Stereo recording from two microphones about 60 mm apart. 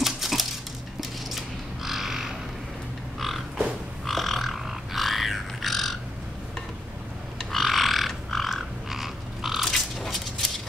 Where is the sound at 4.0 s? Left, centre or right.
Centre.